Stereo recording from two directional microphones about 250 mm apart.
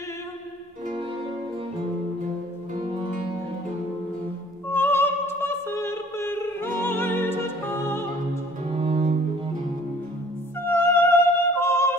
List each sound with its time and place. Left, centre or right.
2.8 s music: right
4.6 s music: centre
8.6 s cello: right
10.6 s music: centre